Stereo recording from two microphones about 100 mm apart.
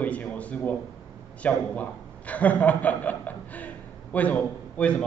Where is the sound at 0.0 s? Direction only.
15° left (ahead or behind).